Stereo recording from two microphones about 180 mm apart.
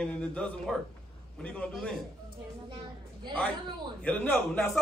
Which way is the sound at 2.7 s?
25° right (ahead or behind).